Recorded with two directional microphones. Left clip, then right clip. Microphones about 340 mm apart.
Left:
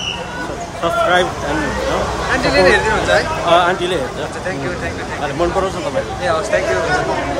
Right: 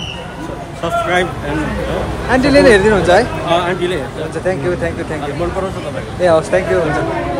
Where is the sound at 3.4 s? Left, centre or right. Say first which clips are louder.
Left 2 dB; centre.